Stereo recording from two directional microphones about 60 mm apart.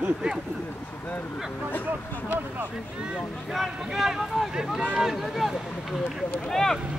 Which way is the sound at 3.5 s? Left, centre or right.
Centre.